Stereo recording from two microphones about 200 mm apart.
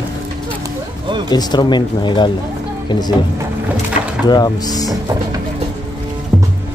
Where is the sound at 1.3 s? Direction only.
20° left (ahead or behind).